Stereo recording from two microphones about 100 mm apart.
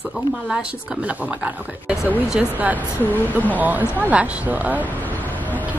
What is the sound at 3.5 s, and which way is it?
A woman's voice, 15° right (ahead or behind).